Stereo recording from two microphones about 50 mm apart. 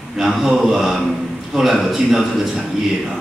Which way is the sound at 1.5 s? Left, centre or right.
Centre.